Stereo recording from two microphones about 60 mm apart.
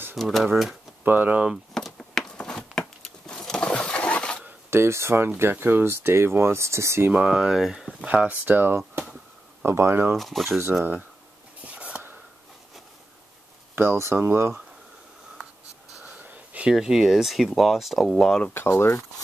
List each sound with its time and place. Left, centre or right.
0.1 s speech: centre
1.0 s speech: right
1.7 s a sound: centre
4.6 s speech: right
7.2 s speech: centre
8.0 s speech: right
9.8 s speech: right
10.1 s speech: centre
11.6 s a sound: right
13.7 s speech: right
16.3 s a sound: right
16.7 s speech: centre
18.1 s speech: centre
18.5 s speech: left